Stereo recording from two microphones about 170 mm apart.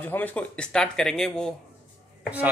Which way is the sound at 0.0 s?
10° left (ahead or behind).